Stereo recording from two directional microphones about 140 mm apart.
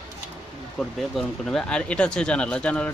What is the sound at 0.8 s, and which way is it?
Speech, centre (ahead or behind).